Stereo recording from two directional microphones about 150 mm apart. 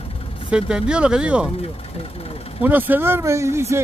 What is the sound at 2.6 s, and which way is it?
Speech, 10° right (ahead or behind).